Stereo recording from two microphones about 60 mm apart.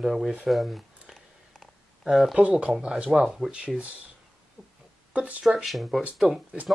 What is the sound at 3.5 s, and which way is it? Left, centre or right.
Speech, centre.